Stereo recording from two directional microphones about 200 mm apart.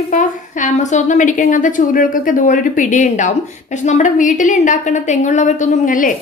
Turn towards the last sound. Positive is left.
turn(degrees=40)  # may be behind; listen again after turning